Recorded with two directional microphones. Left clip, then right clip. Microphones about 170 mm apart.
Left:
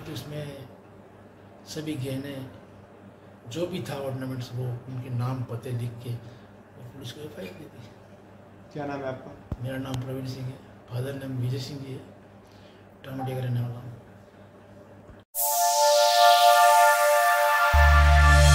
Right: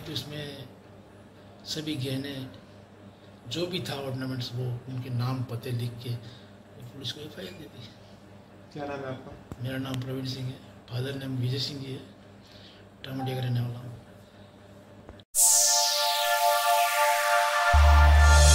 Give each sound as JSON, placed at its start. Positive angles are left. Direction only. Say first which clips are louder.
{"t": 0.1, "sound": "a man's voice", "louder": "right 2 dB", "side_deg": 5}
{"t": 1.7, "sound": "a man's voice", "louder": "right 1 dB", "side_deg": 10}
{"t": 3.4, "sound": "a man's voice", "louder": "even", "side_deg": 10}
{"t": 7.0, "sound": "a man's voice", "louder": "right 2 dB", "side_deg": 10}
{"t": 9.6, "sound": "a man's voice", "louder": "even", "side_deg": 5}
{"t": 13.0, "sound": "a man's voice", "louder": "left 1 dB", "side_deg": 5}
{"t": 15.3, "sound": "music", "louder": "left 1 dB", "side_deg": 0}